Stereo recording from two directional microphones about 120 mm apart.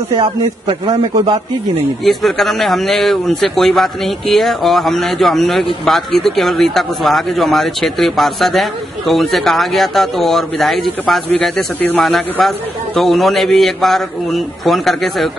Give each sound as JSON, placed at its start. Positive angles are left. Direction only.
{"t": 0.2, "sound": "a man's voice", "side_deg": -50}
{"t": 2.0, "sound": "speech", "side_deg": 0}
{"t": 11.3, "sound": "speech", "side_deg": 15}
{"t": 12.0, "sound": "speech", "side_deg": 5}